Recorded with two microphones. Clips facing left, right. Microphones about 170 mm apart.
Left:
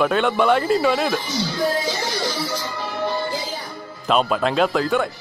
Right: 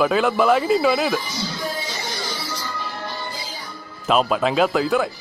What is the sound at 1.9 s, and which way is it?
Music, 70° left (ahead or behind).